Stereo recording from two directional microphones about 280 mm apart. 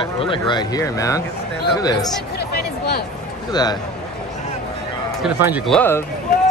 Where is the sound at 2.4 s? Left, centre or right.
Left.